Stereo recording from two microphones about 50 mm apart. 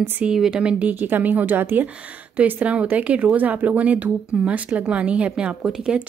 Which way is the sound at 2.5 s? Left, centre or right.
Right.